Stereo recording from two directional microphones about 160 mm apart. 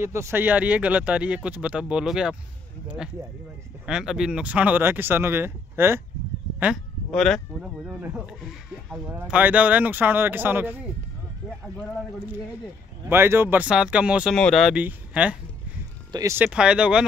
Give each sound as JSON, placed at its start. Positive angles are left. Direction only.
{"t": 0.0, "sound": "speech", "side_deg": -15}
{"t": 3.8, "sound": "speech", "side_deg": -5}
{"t": 7.1, "sound": "speech", "side_deg": 5}
{"t": 13.0, "sound": "speech", "side_deg": -15}
{"t": 16.1, "sound": "speech", "side_deg": -20}
{"t": 16.3, "sound": "speech", "side_deg": -5}